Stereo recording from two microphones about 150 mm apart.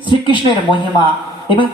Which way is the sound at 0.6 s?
30° left (ahead or behind).